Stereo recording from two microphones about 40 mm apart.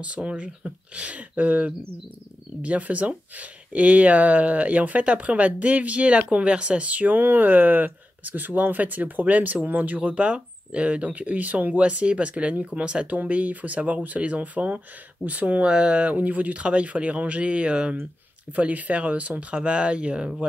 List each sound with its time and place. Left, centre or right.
0.0 s speech: right
7.2 s speech: right
10.0 s speech: right